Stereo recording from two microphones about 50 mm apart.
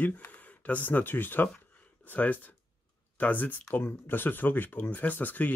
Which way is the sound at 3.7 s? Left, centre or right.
Left.